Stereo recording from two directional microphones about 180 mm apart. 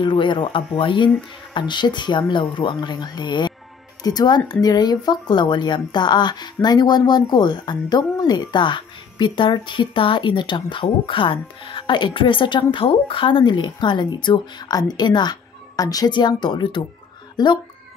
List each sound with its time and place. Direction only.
0.0 s speech: 25° left (ahead or behind)